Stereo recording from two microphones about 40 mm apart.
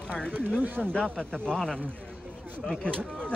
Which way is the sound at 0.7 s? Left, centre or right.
Left.